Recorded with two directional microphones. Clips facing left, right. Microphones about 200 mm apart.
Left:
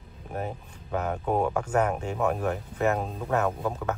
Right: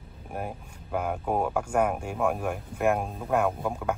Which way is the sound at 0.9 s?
10° right (ahead or behind).